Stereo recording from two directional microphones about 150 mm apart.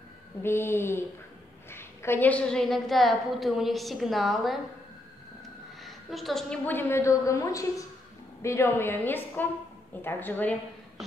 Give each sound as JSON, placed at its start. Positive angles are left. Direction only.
{"t": 0.4, "sound": "a woman's voice", "side_deg": 15}
{"t": 5.9, "sound": "a woman's voice", "side_deg": 0}